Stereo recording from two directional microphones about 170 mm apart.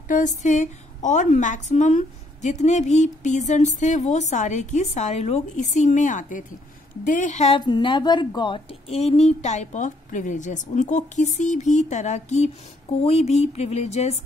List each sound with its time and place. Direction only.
0.1 s a woman's voice: 45° left (ahead or behind)
7.6 s a woman's voice: 25° left (ahead or behind); by 12.4 s 45° left (ahead or behind)
13.0 s a sound: 40° left (ahead or behind)